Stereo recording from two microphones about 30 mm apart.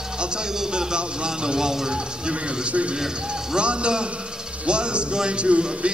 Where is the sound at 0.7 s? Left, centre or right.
Right.